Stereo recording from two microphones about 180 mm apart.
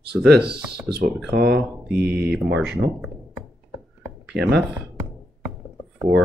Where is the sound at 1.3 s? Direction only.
60° right (ahead or behind).